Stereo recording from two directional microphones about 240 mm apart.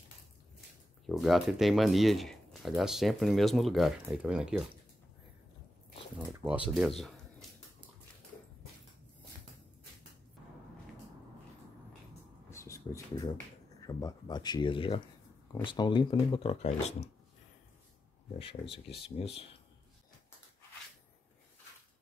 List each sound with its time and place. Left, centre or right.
1.0 s speech: centre
6.1 s speech: centre
12.4 s a sound: centre
13.7 s speech: centre
18.7 s speech: left
19.1 s speech: left